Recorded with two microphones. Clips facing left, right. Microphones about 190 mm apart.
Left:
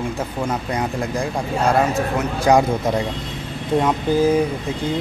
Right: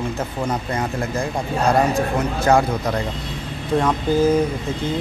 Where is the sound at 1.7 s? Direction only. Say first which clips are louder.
Even; 5° left (ahead or behind).